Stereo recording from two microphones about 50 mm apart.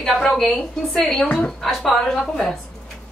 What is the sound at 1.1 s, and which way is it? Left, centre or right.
Speech, left.